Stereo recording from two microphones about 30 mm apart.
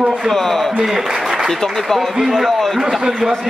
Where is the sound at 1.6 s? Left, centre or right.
Centre.